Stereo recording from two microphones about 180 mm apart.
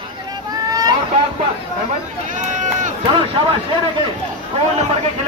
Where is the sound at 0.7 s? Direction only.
20° right (ahead or behind).